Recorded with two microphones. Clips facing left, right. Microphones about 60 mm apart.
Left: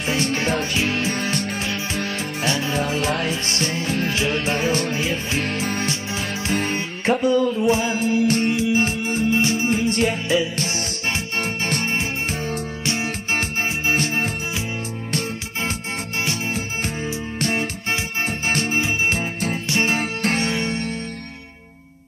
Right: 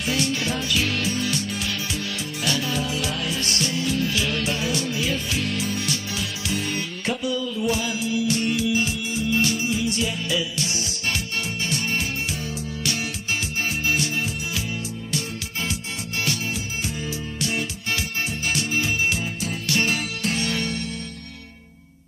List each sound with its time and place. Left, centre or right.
0.0 s music: left
8.5 s music: left
10.2 s music: left
12.8 s music: left
16.3 s music: left
17.4 s music: left
18.8 s music: left
19.1 s music: left
19.7 s music: left